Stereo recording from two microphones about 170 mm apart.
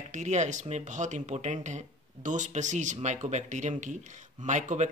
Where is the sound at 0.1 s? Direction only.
45° right (ahead or behind).